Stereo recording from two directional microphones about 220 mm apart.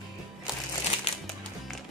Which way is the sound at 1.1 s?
25° left (ahead or behind).